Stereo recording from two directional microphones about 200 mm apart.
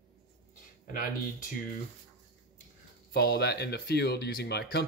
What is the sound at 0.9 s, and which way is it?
Speech, 45° left (ahead or behind).